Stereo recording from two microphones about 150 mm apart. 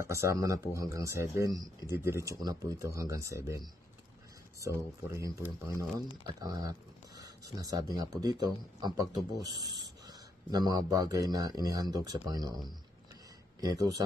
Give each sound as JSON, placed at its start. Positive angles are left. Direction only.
{"t": 0.0, "sound": "a man's voice", "side_deg": -20}
{"t": 13.6, "sound": "a man's voice", "side_deg": -25}